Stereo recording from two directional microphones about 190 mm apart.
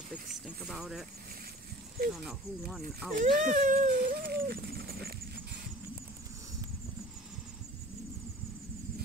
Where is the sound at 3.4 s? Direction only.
45° right (ahead or behind).